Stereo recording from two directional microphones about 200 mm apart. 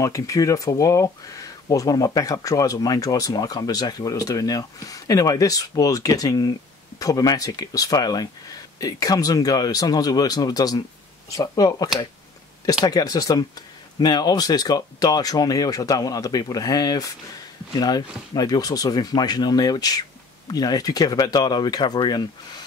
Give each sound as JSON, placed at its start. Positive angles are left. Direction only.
{"t": 0.0, "sound": "speech", "side_deg": 15}